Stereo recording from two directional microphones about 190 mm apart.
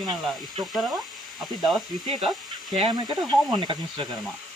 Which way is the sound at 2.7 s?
25° right (ahead or behind).